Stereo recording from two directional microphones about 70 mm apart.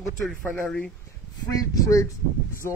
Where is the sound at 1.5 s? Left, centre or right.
Left.